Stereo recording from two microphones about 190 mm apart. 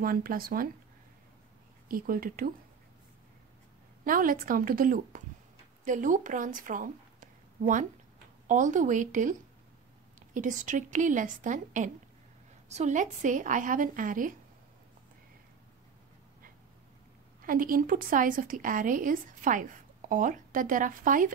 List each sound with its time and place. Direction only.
0.0 s a woman's voice: 50° right (ahead or behind)
1.9 s a woman's voice: 50° right (ahead or behind)
4.0 s a woman's voice: 45° right (ahead or behind)
17.4 s a woman's voice: 50° right (ahead or behind)